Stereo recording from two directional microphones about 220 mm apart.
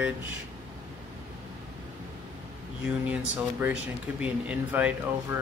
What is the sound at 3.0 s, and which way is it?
Speech, 5° right (ahead or behind).